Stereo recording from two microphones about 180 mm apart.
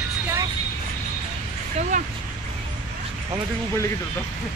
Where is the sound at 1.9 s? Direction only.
45° right (ahead or behind).